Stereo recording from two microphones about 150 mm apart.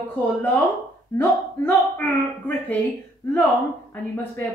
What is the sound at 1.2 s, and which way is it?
Speech, 10° left (ahead or behind).